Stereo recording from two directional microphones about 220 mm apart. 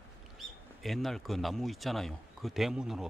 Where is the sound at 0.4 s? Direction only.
Centre (ahead or behind).